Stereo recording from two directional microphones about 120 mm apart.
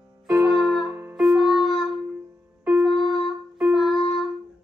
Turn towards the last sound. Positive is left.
turn(degrees=0)  # may be behind; listen again after turning